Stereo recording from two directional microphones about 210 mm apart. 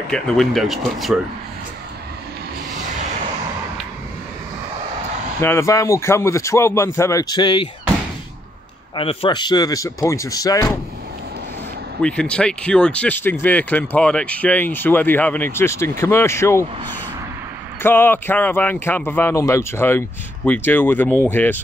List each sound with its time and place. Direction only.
0.1 s speech: 5° left (ahead or behind)
5.4 s a man's voice: 10° left (ahead or behind)
8.9 s speech: 25° left (ahead or behind)
12.0 s speech: 5° left (ahead or behind)
17.8 s speech: 10° left (ahead or behind)